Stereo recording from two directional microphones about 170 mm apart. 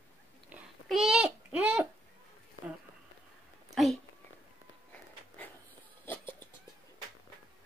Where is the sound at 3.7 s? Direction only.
Centre (ahead or behind).